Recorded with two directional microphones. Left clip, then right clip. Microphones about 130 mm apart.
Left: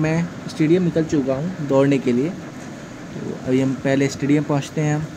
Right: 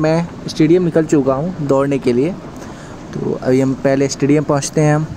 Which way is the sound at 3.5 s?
45° right (ahead or behind).